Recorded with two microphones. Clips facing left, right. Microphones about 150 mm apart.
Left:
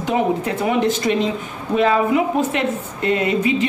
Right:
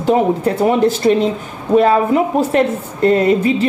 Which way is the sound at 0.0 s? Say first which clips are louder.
Right 5 dB; 35° right (ahead or behind).